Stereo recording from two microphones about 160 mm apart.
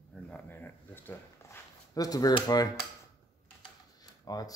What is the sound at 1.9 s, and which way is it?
Speech, 25° left (ahead or behind).